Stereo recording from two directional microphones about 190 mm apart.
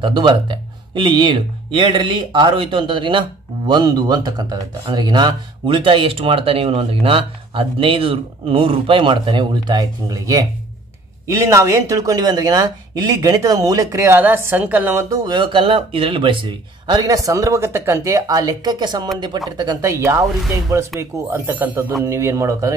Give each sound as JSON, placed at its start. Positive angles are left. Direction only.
{"t": 0.0, "sound": "speech", "side_deg": -25}